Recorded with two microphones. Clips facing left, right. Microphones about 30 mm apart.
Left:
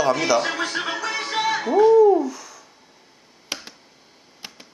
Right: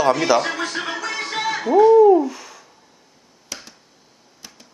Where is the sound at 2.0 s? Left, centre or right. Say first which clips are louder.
Right 3 dB; centre.